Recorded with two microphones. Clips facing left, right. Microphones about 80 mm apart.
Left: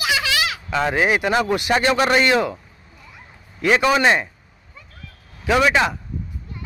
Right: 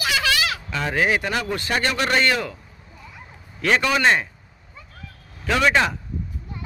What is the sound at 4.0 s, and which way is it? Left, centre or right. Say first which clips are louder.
Speech: left 2 dB; centre.